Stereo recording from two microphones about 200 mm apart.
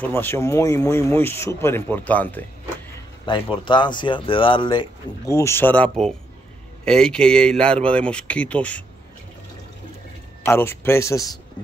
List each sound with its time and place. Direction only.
0.0 s speech: 10° left (ahead or behind)
3.3 s a man's voice: 25° left (ahead or behind); by 8.8 s 5° left (ahead or behind)
10.4 s speech: 10° left (ahead or behind)